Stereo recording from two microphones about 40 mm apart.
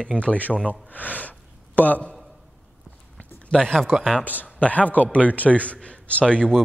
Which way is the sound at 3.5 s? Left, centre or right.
Centre.